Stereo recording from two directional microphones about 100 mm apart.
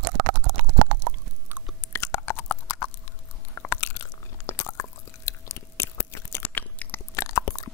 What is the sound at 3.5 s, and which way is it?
Crunch, 20° left (ahead or behind).